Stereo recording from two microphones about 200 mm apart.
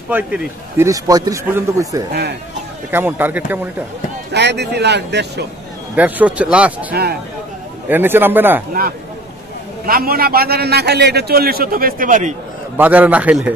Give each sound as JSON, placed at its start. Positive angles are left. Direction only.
{"t": 0.1, "sound": "a man's voice", "side_deg": -10}
{"t": 4.3, "sound": "speech", "side_deg": -55}
{"t": 5.9, "sound": "a man's voice", "side_deg": -5}
{"t": 6.9, "sound": "a man's voice", "side_deg": -50}
{"t": 7.9, "sound": "a man's voice", "side_deg": -10}
{"t": 9.8, "sound": "a man's voice", "side_deg": -45}
{"t": 12.7, "sound": "a man's voice", "side_deg": -10}